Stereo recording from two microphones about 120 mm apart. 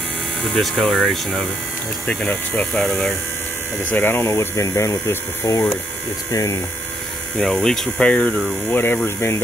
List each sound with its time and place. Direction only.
0.4 s speech: 5° left (ahead or behind)
2.0 s speech: 15° left (ahead or behind)
2.7 s speech: 5° left (ahead or behind)
3.9 s speech: 15° left (ahead or behind)
7.3 s speech: 5° left (ahead or behind); by 9.4 s 20° left (ahead or behind)